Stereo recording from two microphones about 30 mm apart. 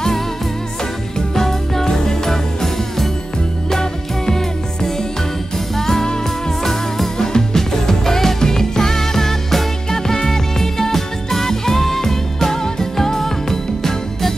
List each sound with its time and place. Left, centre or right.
1.3 s music: centre
5.8 s music: centre